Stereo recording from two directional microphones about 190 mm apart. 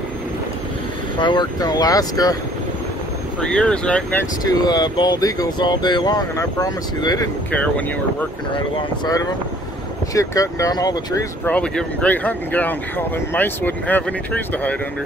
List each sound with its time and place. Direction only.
1.2 s speech: 25° left (ahead or behind)
3.3 s speech: 5° left (ahead or behind)
4.5 s speech: 20° left (ahead or behind)
7.5 s speech: 5° left (ahead or behind)
8.5 s speech: 20° left (ahead or behind)
11.4 s speech: 5° left (ahead or behind)